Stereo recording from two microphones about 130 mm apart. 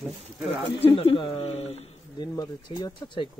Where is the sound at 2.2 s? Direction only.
35° left (ahead or behind).